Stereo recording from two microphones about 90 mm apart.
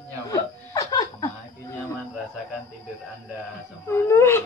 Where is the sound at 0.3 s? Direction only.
40° left (ahead or behind).